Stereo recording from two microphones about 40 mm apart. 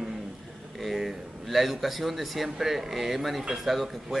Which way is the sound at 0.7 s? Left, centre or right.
Centre.